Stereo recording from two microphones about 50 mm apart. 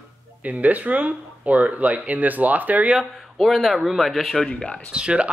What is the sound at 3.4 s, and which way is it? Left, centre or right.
Speech, centre.